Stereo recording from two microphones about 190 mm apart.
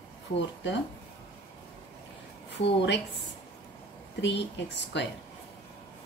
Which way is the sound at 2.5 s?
65° left (ahead or behind).